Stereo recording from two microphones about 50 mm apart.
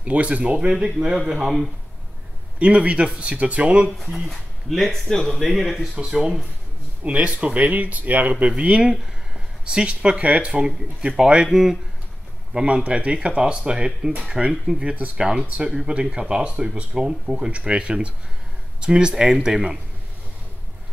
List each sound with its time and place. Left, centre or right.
0.0 s speech: right
2.6 s speech: right
4.0 s speech: centre
5.8 s speech: centre
7.0 s speech: right
8.9 s speech: centre
11.4 s speech: centre
12.5 s speech: right